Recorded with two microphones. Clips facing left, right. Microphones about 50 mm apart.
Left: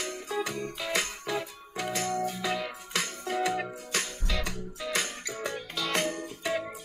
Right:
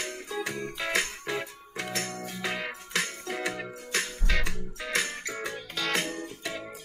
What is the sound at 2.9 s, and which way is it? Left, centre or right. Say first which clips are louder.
Music: left 1 dB; centre.